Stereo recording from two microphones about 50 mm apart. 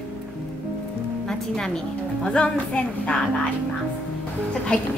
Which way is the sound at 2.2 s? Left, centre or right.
Left.